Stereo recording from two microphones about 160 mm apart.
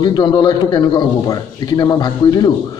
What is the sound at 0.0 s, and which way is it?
Speech, 30° left (ahead or behind).